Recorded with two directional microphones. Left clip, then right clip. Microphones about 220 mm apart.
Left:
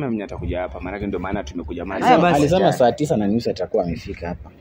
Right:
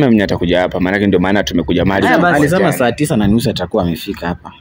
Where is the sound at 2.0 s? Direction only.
10° left (ahead or behind).